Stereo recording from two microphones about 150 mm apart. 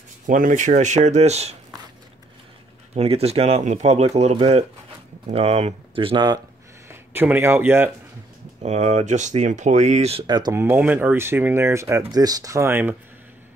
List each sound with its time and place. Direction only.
0.3 s speech: 60° right (ahead or behind)
2.9 s speech: 40° right (ahead or behind)
6.9 s speech: 15° right (ahead or behind)
8.6 s speech: 45° right (ahead or behind)
10.2 s speech: 30° right (ahead or behind)
10.5 s speech: 15° right (ahead or behind)